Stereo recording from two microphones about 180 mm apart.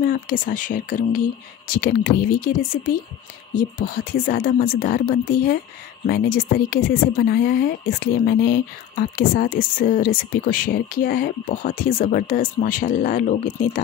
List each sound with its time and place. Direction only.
0.0 s speech: 50° left (ahead or behind)